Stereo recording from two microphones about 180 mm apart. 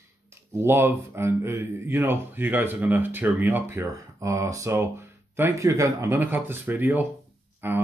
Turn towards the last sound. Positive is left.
turn(degrees=-10)  # may be behind; listen again after turning